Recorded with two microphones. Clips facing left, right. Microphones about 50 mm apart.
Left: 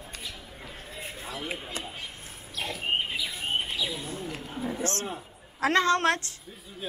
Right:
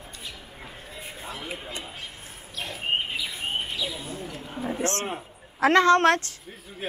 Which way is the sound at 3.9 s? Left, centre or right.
Right.